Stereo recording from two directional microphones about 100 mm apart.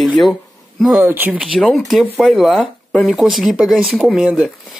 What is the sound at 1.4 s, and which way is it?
Speech, centre (ahead or behind).